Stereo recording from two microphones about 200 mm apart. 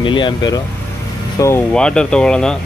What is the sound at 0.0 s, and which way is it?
Speech, 25° left (ahead or behind).